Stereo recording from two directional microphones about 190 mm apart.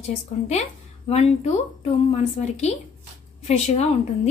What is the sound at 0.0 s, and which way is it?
A woman's voice, 35° left (ahead or behind).